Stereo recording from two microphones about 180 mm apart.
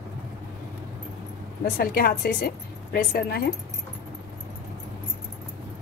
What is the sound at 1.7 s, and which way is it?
A woman's voice, 60° left (ahead or behind).